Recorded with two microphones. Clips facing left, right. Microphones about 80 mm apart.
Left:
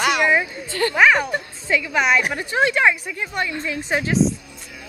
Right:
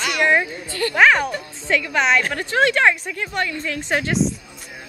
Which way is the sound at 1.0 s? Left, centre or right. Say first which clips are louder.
Right 1 dB; centre.